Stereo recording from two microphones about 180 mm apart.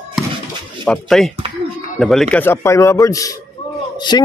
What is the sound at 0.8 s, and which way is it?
A man's voice, 5° left (ahead or behind).